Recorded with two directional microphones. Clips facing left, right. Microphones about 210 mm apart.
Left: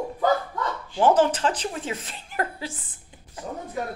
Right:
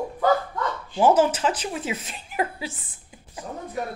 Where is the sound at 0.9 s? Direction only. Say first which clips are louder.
Right 1 dB; 10° right (ahead or behind).